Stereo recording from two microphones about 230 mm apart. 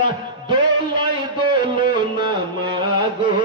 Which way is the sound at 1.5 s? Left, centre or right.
Centre.